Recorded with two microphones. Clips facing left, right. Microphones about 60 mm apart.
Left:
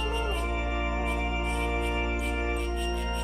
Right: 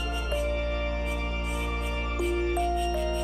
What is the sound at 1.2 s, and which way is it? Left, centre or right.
Music, centre.